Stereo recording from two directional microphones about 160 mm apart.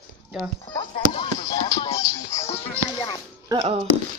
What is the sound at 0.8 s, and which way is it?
Speech, 30° left (ahead or behind).